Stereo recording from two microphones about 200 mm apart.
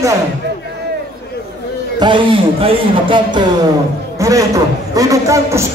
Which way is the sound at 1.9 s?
25° right (ahead or behind).